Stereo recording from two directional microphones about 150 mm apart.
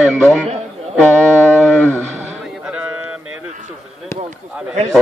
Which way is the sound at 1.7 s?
10° left (ahead or behind).